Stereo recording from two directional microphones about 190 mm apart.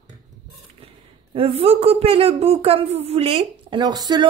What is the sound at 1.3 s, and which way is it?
A woman's voice, 30° right (ahead or behind).